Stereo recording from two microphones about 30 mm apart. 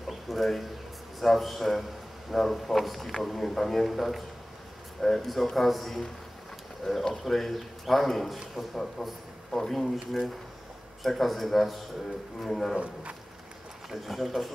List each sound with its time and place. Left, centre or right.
0.1 s a sound: centre
1.2 s a man's voice: centre
6.8 s speech: left
7.2 s a man's voice: centre
12.4 s speech: centre
13.8 s a man's voice: centre